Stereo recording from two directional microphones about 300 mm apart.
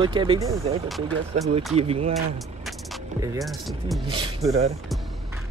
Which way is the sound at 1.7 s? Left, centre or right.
Centre.